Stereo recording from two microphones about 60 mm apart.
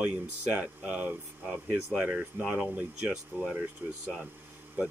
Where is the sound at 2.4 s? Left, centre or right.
Centre.